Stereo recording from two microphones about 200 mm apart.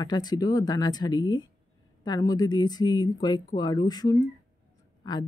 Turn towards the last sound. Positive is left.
turn(degrees=20)  # may be behind; listen again after turning